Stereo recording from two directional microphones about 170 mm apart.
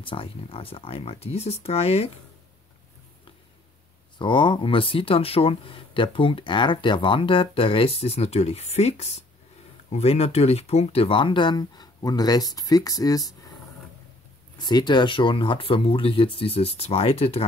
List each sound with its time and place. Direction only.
0.0 s speech: 30° left (ahead or behind)
4.2 s speech: 30° left (ahead or behind)
14.6 s speech: 25° left (ahead or behind)